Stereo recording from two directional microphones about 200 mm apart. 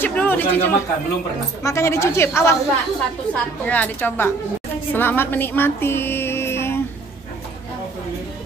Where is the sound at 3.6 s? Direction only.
10° left (ahead or behind).